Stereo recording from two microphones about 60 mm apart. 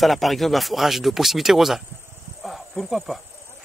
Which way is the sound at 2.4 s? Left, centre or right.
Centre.